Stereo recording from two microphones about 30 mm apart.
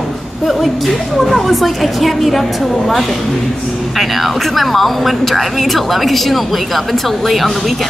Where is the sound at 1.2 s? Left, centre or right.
Centre.